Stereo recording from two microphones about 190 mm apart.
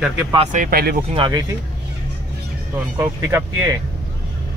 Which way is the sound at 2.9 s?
15° right (ahead or behind).